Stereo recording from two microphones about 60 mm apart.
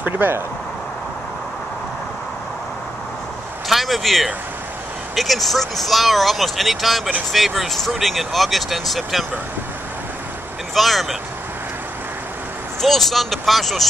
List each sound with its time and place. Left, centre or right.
0.0 s speech: right
3.6 s a sound: centre
5.1 s speech: centre
10.7 s speech: centre
12.8 s speech: centre